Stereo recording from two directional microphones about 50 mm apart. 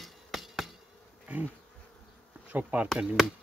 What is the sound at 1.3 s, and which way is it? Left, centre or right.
Speech, right.